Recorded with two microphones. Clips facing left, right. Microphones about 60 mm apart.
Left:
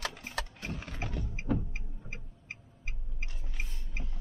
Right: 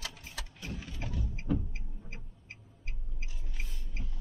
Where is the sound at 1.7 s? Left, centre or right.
Left.